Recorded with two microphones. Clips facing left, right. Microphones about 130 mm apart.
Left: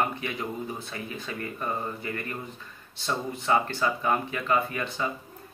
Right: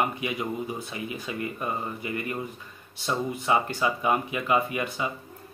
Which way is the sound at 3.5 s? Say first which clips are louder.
Even; 15° right (ahead or behind).